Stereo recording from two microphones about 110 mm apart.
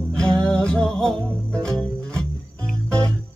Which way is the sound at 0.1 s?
10° left (ahead or behind).